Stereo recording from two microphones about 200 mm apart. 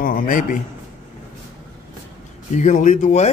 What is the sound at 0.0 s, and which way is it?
Speech, 45° left (ahead or behind).